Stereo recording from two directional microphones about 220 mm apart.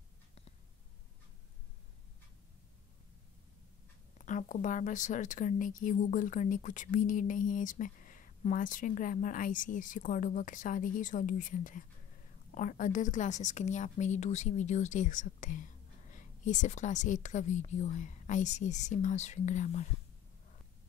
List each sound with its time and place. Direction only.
4.3 s a woman's voice: 35° left (ahead or behind)